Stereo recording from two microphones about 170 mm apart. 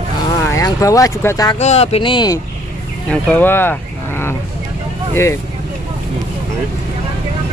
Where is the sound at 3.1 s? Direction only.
10° left (ahead or behind).